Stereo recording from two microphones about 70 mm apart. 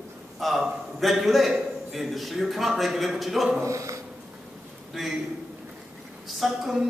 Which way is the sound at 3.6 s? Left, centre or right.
Right.